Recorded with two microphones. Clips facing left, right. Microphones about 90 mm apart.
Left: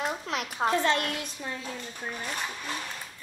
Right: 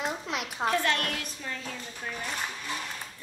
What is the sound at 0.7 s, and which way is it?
Speech, 20° left (ahead or behind).